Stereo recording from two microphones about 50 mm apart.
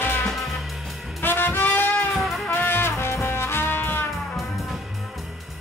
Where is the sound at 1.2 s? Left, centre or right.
Left.